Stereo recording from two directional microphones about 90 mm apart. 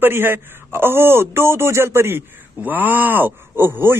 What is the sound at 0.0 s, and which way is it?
Speech, 25° right (ahead or behind).